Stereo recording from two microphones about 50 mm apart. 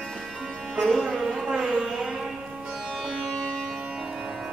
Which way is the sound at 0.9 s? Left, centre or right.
Centre.